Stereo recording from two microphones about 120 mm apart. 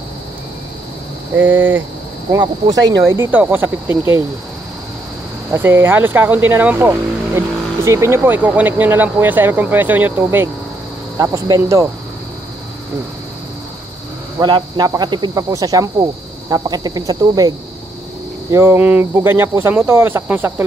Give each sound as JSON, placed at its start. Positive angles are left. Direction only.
{"t": 1.3, "sound": "speech", "side_deg": -15}
{"t": 2.3, "sound": "speech", "side_deg": -35}
{"t": 3.1, "sound": "speech", "side_deg": -15}
{"t": 5.5, "sound": "speech", "side_deg": -20}
{"t": 11.1, "sound": "speech", "side_deg": -30}
{"t": 14.4, "sound": "speech", "side_deg": -40}
{"t": 18.5, "sound": "speech", "side_deg": -20}